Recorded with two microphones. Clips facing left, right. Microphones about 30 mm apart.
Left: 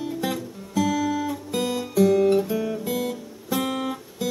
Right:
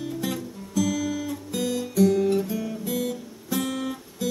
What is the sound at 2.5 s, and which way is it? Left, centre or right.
Music, left.